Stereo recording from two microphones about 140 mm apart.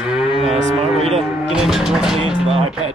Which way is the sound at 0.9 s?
45° right (ahead or behind).